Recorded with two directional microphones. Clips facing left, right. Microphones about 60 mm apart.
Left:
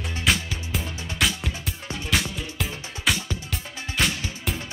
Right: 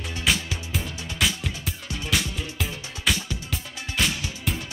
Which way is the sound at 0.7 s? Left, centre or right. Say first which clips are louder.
Left 1 dB; centre.